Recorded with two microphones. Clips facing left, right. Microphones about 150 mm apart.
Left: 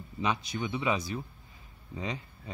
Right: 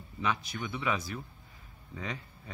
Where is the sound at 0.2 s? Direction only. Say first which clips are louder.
Left 2 dB; 20° left (ahead or behind).